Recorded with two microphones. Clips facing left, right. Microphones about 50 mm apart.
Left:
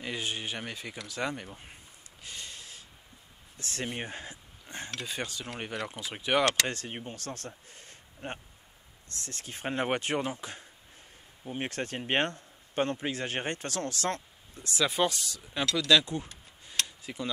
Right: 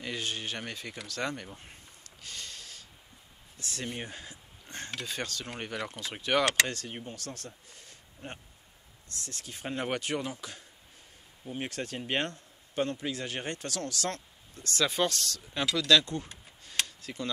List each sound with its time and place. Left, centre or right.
0.0 s speech: centre
1.0 s a sound: centre
3.5 s speech: left
3.8 s speech: left
4.6 s speech: centre
6.7 s speech: left
7.2 s speech: left
11.7 s speech: left
14.6 s speech: centre
16.8 s tick-tock: centre